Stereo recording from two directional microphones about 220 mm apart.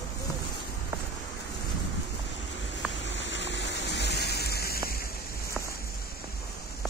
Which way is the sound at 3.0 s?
55° left (ahead or behind).